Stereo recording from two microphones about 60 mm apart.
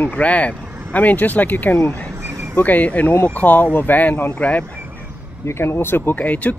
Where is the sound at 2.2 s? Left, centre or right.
Right.